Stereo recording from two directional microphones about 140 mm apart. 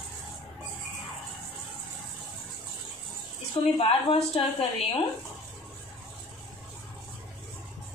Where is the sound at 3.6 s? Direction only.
40° left (ahead or behind).